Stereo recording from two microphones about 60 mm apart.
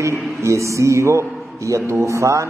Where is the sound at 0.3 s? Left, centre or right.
Right.